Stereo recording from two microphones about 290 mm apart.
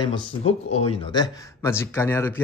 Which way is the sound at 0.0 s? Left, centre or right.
Centre.